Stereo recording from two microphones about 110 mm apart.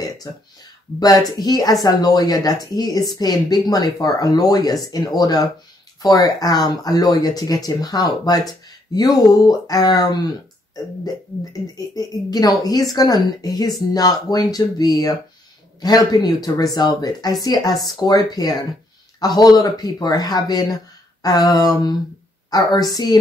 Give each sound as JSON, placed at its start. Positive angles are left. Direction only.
{"t": 0.3, "sound": "speech", "side_deg": 35}
{"t": 11.6, "sound": "speech", "side_deg": 35}